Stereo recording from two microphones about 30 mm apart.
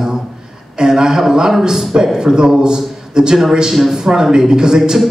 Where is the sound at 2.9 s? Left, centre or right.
Right.